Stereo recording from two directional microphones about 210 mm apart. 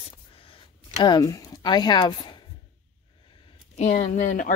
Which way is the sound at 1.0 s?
15° left (ahead or behind).